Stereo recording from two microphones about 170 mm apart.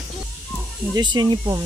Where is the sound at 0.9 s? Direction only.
25° right (ahead or behind).